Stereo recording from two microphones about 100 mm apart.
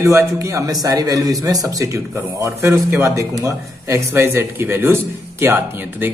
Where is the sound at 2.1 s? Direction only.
25° right (ahead or behind).